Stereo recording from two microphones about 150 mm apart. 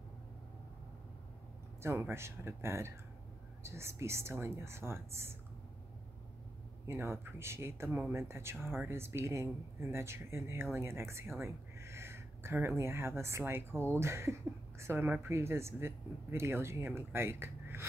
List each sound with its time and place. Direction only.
1.8 s speech: 15° right (ahead or behind)
6.9 s speech: 15° right (ahead or behind)